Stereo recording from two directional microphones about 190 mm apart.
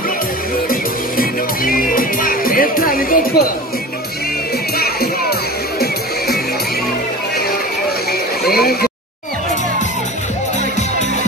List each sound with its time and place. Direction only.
0.7 s music: 50° left (ahead or behind)
4.7 s music: 55° left (ahead or behind)
8.5 s a sound: 55° left (ahead or behind)